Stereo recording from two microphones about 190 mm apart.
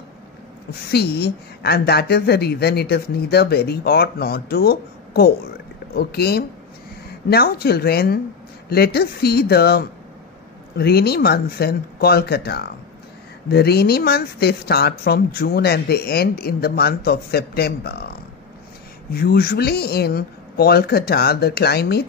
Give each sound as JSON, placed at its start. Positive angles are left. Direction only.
{"t": 0.9, "sound": "speech", "side_deg": 60}
{"t": 19.1, "sound": "speech", "side_deg": 55}